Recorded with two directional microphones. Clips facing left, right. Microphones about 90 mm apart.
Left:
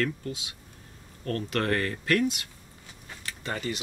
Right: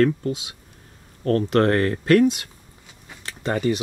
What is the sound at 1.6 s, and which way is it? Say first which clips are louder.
Speech: right 7 dB; 40° right (ahead or behind).